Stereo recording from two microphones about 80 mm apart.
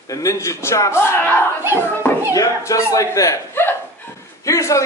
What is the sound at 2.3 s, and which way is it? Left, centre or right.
A man's voice, left.